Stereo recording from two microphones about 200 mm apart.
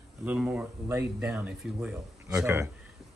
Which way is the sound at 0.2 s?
5° right (ahead or behind).